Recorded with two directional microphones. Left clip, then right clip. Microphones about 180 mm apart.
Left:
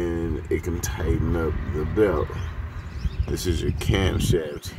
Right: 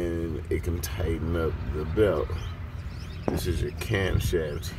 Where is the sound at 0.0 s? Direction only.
10° left (ahead or behind).